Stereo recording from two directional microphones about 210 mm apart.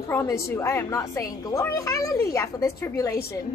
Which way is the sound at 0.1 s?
15° left (ahead or behind).